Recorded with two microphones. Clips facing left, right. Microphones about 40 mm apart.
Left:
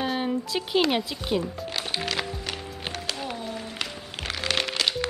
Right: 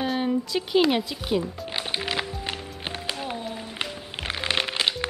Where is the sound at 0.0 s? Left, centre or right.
Centre.